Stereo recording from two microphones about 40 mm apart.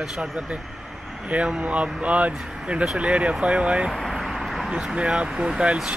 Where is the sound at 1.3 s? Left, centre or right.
Right.